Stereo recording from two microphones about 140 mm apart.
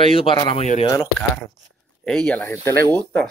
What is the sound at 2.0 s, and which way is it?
Speech, 5° left (ahead or behind).